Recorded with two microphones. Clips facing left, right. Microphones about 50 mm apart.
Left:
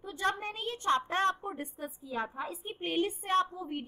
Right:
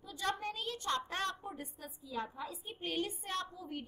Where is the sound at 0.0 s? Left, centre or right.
Left.